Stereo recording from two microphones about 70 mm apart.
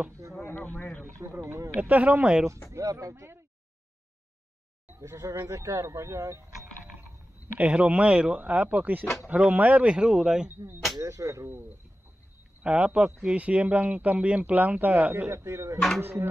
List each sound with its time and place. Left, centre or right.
0.4 s a sound: left
1.8 s speech: right
2.7 s speech: right
4.8 s a sound: right
5.5 s speech: right
7.5 s speech: centre
11.0 s speech: right
12.6 s speech: centre
15.3 s speech: right
16.0 s speech: right